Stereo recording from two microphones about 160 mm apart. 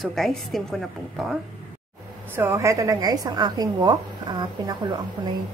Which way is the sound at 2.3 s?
15° right (ahead or behind).